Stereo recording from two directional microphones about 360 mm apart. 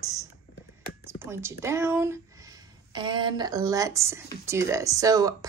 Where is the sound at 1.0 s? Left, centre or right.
Centre.